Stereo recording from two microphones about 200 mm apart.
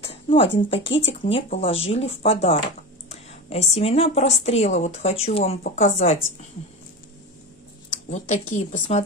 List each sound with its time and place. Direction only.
0.0 s speech: 25° left (ahead or behind)
8.1 s speech: 35° left (ahead or behind)